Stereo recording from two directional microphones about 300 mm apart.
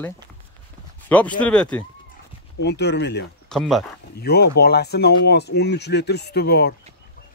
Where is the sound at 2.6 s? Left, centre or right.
Left.